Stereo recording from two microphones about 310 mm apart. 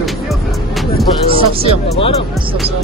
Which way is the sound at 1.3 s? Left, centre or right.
Centre.